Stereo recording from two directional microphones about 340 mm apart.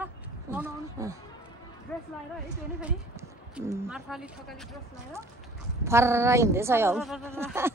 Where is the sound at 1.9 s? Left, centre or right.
Centre.